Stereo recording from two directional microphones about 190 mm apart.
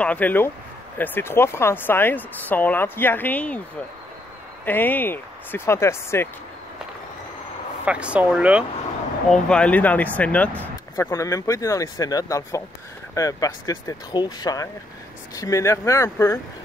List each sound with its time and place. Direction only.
0.0 s speech: 10° left (ahead or behind)
4.6 s speech: 10° left (ahead or behind)
7.8 s speech: 5° right (ahead or behind)
9.3 s speech: 5° left (ahead or behind)